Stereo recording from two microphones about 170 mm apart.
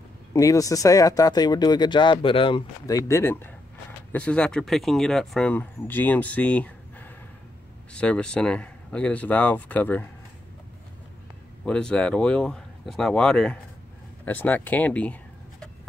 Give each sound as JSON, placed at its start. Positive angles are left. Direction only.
{"t": 0.3, "sound": "speech", "side_deg": 20}
{"t": 11.6, "sound": "speech", "side_deg": 5}